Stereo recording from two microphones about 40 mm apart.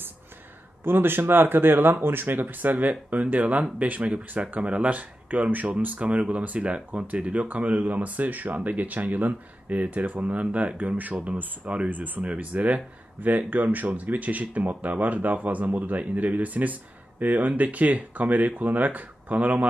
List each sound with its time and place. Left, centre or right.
0.8 s speech: right
5.9 s speech: right
11.0 s speech: right
11.6 s speech: right
11.9 s speech: right